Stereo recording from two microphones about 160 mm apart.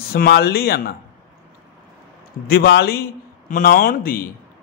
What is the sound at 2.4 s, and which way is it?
Speech, 80° left.